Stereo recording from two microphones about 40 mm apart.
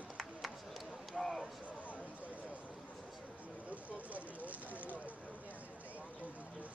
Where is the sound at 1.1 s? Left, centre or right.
Centre.